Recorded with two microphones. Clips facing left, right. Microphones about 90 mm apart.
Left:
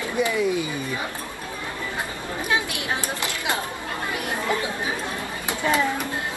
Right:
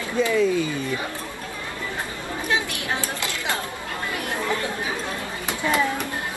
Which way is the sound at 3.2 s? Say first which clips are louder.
Left 1 dB; 20° left (ahead or behind).